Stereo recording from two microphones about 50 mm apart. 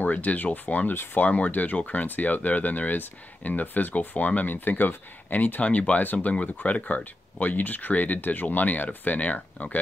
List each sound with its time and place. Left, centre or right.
0.0 s speech: left